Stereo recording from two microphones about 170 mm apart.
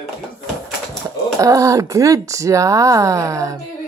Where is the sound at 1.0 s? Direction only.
20° right (ahead or behind).